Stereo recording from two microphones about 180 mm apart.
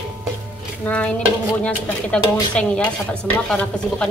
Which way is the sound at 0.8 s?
5° left (ahead or behind).